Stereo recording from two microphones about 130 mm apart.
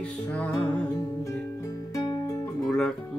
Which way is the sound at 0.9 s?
25° left (ahead or behind).